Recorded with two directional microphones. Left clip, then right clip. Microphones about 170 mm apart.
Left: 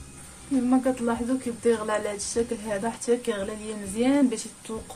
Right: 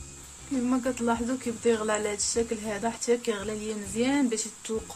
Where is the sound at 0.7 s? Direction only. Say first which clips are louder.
Left 2 dB; 20° right (ahead or behind).